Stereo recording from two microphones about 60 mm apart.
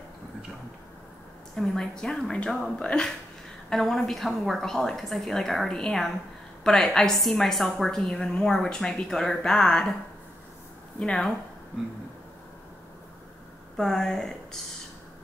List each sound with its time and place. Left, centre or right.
1.6 s a woman's voice: centre
11.0 s a woman's voice: centre
13.7 s a woman's voice: centre